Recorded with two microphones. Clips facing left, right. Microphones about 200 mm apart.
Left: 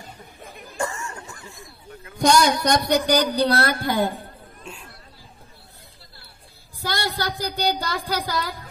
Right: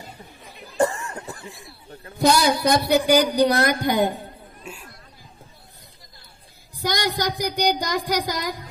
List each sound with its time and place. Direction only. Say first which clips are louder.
0.7 s a sound: right 7 dB; 35° right (ahead or behind)
1.4 s speech: right 2 dB; 15° right (ahead or behind)
2.1 s speech: even; 5° right (ahead or behind)
4.7 s chatter: right 1 dB; 5° right (ahead or behind)
6.1 s a woman's voice: left 1 dB; 15° right (ahead or behind)